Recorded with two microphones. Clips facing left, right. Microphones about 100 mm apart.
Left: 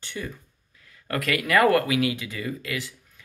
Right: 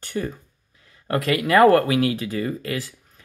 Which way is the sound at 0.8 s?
25° right (ahead or behind).